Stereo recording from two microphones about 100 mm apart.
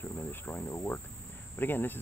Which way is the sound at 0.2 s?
20° left (ahead or behind).